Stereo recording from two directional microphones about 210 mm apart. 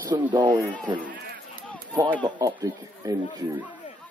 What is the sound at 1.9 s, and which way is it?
Speech, 10° right (ahead or behind).